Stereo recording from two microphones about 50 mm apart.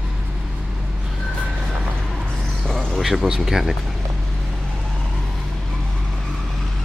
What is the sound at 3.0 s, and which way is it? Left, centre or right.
Speech, centre.